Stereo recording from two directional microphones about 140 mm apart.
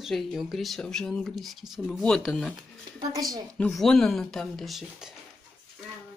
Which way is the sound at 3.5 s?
5° left (ahead or behind).